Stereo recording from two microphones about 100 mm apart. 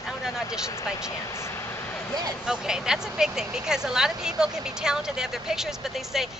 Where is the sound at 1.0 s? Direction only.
25° left (ahead or behind).